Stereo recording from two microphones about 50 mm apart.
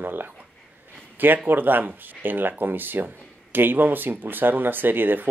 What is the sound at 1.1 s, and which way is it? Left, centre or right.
Speech, right.